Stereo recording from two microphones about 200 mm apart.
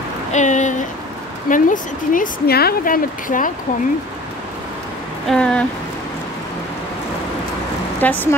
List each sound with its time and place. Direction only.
0.3 s a sound: 35° left (ahead or behind)
1.5 s speech: 40° left (ahead or behind)
5.3 s speech: 5° left (ahead or behind)
8.0 s speech: 10° left (ahead or behind)